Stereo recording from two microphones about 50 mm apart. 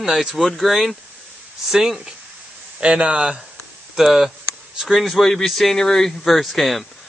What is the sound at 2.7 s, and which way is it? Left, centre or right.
Speech, right.